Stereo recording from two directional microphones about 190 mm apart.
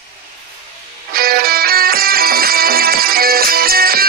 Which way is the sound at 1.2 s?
50° right (ahead or behind).